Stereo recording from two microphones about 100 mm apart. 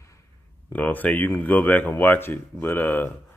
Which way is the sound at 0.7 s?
15° left (ahead or behind).